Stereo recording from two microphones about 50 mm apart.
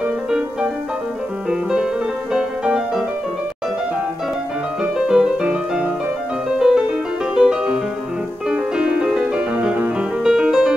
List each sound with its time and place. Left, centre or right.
1.5 s music: centre
4.9 s music: centre
10.2 s music: centre